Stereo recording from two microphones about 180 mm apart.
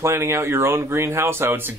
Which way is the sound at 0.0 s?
15° right (ahead or behind).